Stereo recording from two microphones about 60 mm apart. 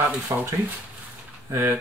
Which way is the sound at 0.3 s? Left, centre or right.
Right.